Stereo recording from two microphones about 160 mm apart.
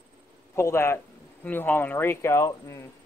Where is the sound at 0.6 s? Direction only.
15° left (ahead or behind).